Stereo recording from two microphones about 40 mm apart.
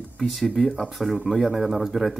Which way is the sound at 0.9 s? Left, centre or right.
Centre.